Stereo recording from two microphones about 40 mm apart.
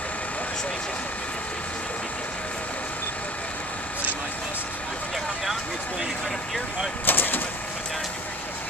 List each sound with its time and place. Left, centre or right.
7.1 s vehicle: left